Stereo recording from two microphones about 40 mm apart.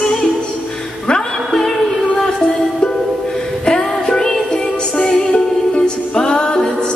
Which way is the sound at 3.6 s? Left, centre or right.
Left.